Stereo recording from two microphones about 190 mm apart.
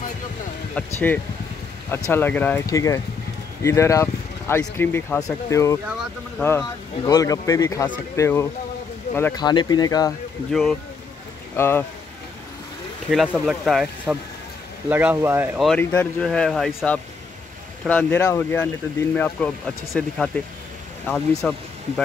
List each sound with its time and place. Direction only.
0.9 s speech: 10° left (ahead or behind)
10.5 s speech: centre (ahead or behind)
11.5 s speech: 10° left (ahead or behind)
13.1 s speech: centre (ahead or behind)
15.6 s speech: 5° left (ahead or behind)